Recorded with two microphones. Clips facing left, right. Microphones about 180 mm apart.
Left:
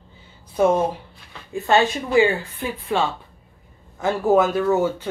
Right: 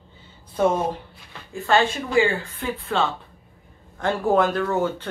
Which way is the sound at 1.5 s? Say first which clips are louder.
Left 2 dB; 20° left (ahead or behind).